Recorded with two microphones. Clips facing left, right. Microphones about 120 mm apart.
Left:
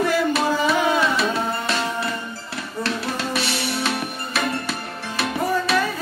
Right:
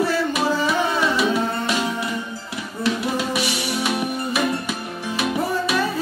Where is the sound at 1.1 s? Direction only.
15° right (ahead or behind).